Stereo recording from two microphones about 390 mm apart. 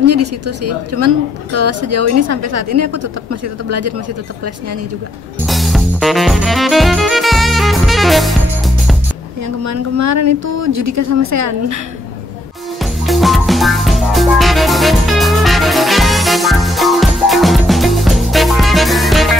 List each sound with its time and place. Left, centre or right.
0.0 s a woman's voice: right
5.5 s music: centre
9.7 s speech: right
13.0 s music: centre